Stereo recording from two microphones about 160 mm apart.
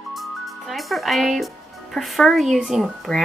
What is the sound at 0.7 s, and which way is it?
Speech, centre (ahead or behind).